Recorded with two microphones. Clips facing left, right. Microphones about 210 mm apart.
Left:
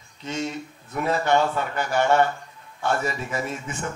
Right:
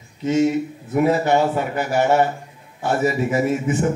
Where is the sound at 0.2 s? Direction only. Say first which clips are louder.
Right 12 dB; 10° right (ahead or behind).